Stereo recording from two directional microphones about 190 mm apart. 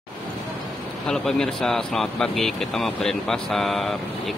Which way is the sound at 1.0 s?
5° left (ahead or behind).